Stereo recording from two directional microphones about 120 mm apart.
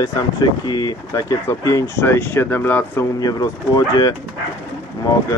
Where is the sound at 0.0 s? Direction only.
35° left (ahead or behind); by 3.1 s 20° left (ahead or behind).